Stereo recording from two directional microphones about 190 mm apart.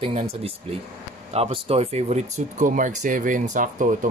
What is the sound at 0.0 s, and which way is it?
Speech, 35° right (ahead or behind).